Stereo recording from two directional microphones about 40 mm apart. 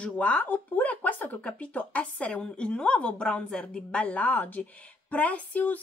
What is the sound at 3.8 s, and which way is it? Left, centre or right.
A woman's voice, left.